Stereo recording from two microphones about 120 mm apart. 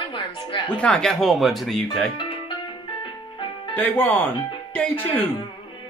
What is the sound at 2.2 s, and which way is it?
Music, 45° left (ahead or behind).